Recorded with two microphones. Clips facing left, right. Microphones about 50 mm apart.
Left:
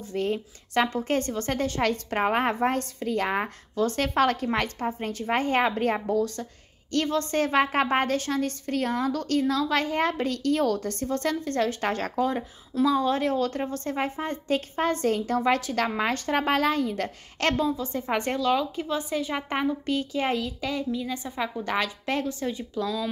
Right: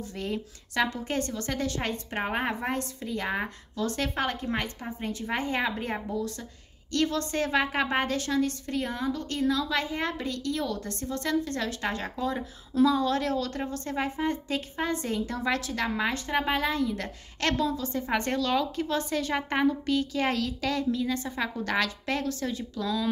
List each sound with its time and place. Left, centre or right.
0.0 s speech: left
4.1 s a woman's voice: left
4.7 s a woman's voice: left
6.9 s speech: left
8.8 s speech: left
9.5 s a woman's voice: left
12.8 s a woman's voice: left
16.0 s a woman's voice: left; by 19.7 s centre
19.9 s a woman's voice: left